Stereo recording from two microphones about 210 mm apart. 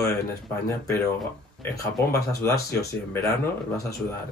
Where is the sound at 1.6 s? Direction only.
15° left (ahead or behind).